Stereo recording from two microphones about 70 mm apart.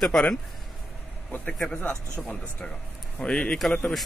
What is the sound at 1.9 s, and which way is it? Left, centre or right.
Speech, centre.